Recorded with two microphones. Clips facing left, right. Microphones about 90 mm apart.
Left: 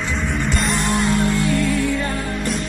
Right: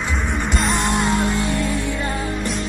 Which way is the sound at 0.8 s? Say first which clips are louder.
Left 2 dB; 20° right (ahead or behind).